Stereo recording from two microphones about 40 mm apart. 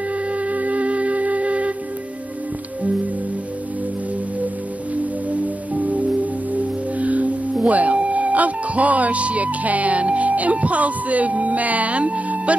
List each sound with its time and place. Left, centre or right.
0.3 s music: right
4.9 s music: right
6.5 s singing bowl: right
7.6 s speech: right